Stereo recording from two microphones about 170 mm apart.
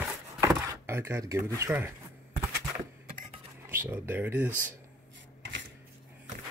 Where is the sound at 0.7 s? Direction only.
15° right (ahead or behind).